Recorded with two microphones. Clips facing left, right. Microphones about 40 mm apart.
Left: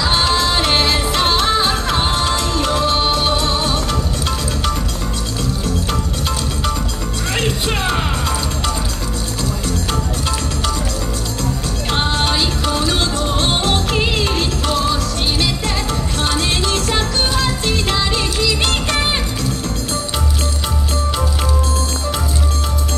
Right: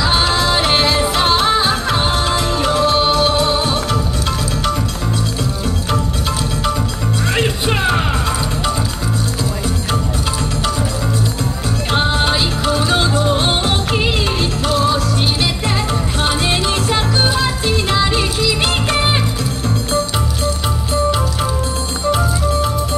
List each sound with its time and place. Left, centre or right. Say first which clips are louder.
0.0 s music: right 1 dB; centre
2.7 s music: right 3 dB; centre
3.3 s music: right 2 dB; centre
7.3 s music: even; centre
11.9 s music: right 2 dB; centre
15.4 s music: right 2 dB; centre